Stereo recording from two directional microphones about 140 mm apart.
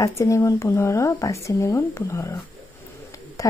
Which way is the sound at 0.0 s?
20° left (ahead or behind).